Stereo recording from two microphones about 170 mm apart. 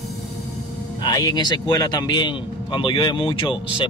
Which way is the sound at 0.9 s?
25° left (ahead or behind).